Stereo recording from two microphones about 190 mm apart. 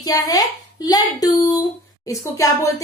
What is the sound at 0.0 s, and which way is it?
A child's voice, 20° left (ahead or behind).